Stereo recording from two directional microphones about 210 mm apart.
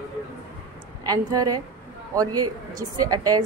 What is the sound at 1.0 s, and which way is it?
Speech, 20° right (ahead or behind).